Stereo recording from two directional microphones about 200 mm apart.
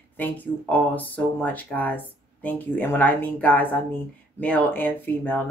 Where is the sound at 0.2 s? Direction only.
10° left (ahead or behind).